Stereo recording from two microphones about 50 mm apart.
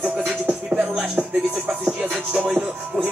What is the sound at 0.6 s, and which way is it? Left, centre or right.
Music, right.